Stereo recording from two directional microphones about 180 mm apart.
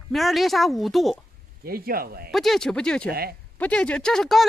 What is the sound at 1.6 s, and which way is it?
Speech, 55° right (ahead or behind).